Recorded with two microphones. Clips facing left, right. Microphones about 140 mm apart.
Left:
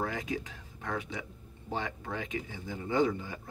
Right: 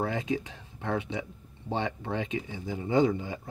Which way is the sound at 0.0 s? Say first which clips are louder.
Right 4 dB; 25° right (ahead or behind).